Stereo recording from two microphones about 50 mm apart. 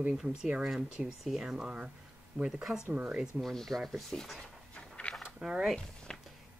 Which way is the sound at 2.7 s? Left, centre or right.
Right.